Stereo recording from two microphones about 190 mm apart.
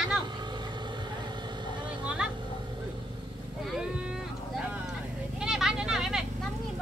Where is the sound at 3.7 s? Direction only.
5° right (ahead or behind).